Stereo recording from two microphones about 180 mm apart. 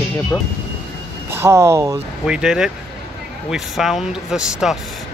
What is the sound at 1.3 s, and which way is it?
Speech, 15° right (ahead or behind).